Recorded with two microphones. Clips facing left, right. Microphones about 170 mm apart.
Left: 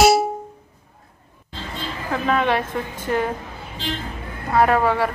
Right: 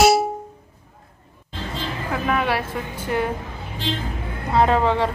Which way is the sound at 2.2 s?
10° right (ahead or behind).